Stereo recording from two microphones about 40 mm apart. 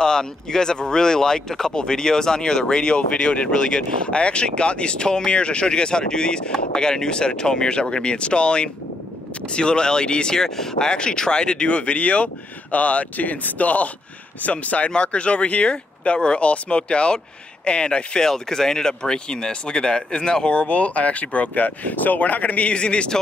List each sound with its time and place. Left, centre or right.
0.0 s speech: centre
20.5 s speech: left